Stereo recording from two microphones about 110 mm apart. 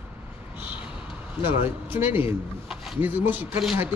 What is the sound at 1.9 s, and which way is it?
Speech, 20° right (ahead or behind).